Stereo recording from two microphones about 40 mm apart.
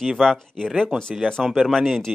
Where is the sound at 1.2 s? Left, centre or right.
Centre.